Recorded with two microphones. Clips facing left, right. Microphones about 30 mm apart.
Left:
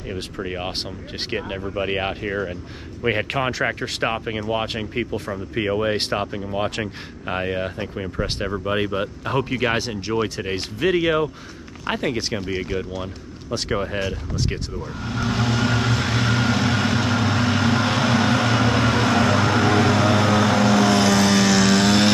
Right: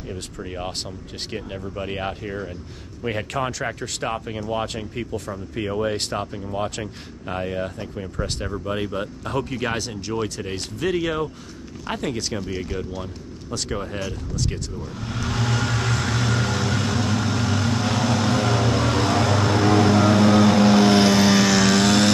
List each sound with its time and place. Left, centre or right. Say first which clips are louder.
0.1 s speech: left 5 dB; left
15.0 s vehicle: left 3 dB; centre; by 20.2 s left
21.2 s vehicle: even; centre